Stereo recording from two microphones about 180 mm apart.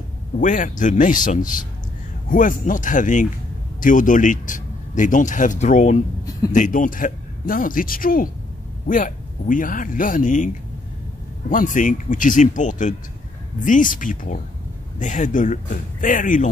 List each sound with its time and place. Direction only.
0.4 s speech: 45° left (ahead or behind)
11.5 s speech: 45° left (ahead or behind)